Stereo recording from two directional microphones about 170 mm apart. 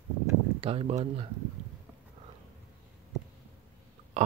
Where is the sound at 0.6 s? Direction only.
35° right (ahead or behind).